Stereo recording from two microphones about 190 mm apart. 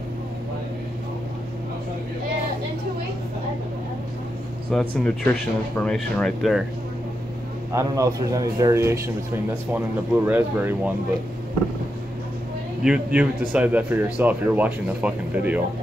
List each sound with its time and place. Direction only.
4.7 s speech: 5° left (ahead or behind)
7.7 s speech: 15° right (ahead or behind)
12.8 s speech: 5° right (ahead or behind)